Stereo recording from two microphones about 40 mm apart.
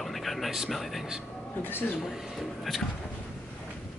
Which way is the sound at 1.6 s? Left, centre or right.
Left.